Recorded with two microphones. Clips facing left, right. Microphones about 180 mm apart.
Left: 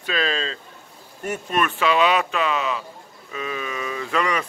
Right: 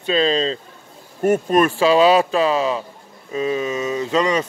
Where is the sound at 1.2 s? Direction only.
40° right (ahead or behind); by 4.5 s 25° right (ahead or behind).